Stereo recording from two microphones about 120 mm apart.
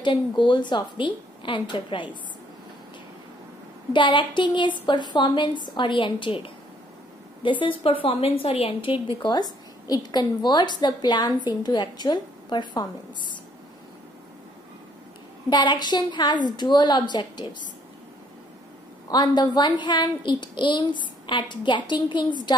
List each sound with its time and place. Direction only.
0.0 s a woman's voice: 40° left (ahead or behind)
3.9 s a woman's voice: 40° left (ahead or behind)
9.2 s a woman's voice: 35° left (ahead or behind)
15.5 s a woman's voice: 35° left (ahead or behind)
19.0 s a woman's voice: 35° left (ahead or behind)